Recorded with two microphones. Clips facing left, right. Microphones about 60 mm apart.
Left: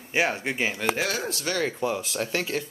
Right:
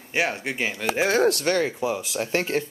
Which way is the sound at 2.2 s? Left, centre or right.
Right.